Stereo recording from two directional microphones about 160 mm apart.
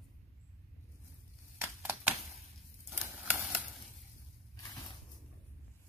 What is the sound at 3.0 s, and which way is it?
Typewriter, 15° right (ahead or behind).